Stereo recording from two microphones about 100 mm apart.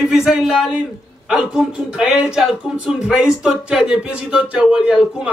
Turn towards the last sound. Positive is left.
turn(degrees=-5)  # may be behind; listen again after turning